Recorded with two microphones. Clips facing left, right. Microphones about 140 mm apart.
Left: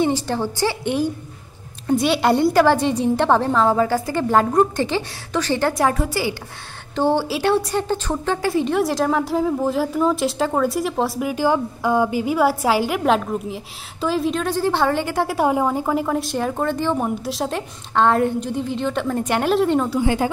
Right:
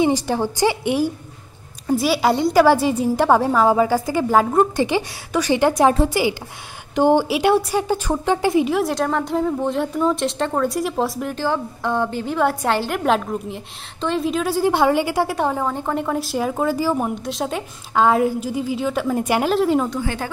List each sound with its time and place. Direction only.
0.0 s a woman's voice: 15° right (ahead or behind)
8.6 s a woman's voice: centre (ahead or behind)
15.4 s a woman's voice: 10° left (ahead or behind)
20.0 s speech: 20° left (ahead or behind)